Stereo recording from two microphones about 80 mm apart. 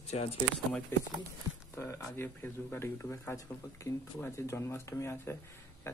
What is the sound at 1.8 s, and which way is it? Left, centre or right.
Speech, left.